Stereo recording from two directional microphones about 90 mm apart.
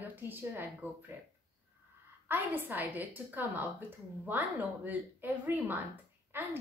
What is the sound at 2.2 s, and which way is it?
A woman's voice, 20° right (ahead or behind).